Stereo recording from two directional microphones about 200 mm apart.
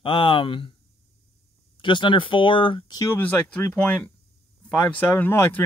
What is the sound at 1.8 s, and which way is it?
Speech, 25° left (ahead or behind).